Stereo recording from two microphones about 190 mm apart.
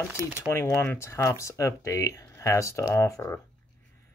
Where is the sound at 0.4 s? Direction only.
15° left (ahead or behind).